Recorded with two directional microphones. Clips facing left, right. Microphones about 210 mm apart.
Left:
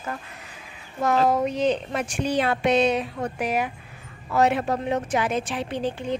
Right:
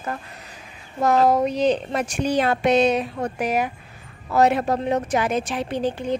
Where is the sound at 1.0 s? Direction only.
35° right (ahead or behind).